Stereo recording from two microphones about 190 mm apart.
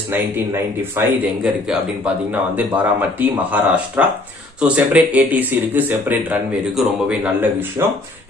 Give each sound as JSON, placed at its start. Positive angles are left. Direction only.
{"t": 0.1, "sound": "speech", "side_deg": -10}